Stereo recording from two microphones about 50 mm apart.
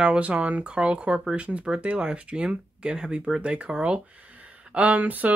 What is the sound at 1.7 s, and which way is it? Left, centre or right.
Speech, centre.